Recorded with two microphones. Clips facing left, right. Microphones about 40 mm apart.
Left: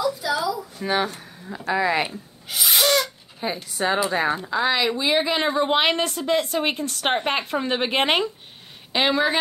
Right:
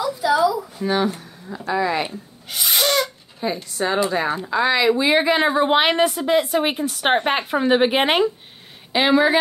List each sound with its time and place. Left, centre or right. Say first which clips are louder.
0.0 s a sound: right 5 dB; centre
1.7 s speech: even; centre
2.0 s gasp: right 1 dB; centre
3.3 s a woman's voice: right 3 dB; centre